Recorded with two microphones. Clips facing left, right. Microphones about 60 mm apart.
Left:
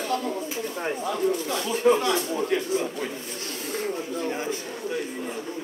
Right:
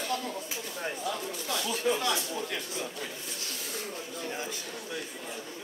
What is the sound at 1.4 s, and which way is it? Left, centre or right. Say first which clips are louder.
Speech: left 5 dB; left.